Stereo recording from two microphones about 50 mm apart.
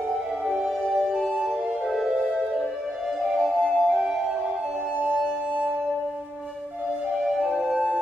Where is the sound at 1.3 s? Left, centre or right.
Centre.